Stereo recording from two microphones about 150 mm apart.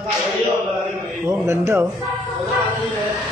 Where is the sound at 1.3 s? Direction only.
15° right (ahead or behind).